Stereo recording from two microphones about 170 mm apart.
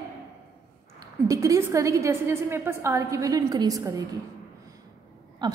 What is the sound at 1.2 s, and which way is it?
A woman's voice, 20° right (ahead or behind).